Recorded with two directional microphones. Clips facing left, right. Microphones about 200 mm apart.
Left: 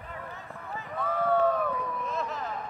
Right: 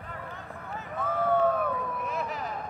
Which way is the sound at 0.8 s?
Centre (ahead or behind).